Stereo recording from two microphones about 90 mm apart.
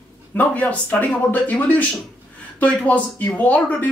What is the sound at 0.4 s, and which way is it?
Speech, 15° left (ahead or behind).